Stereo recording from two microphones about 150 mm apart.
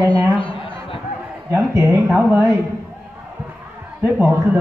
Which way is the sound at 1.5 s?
20° right (ahead or behind).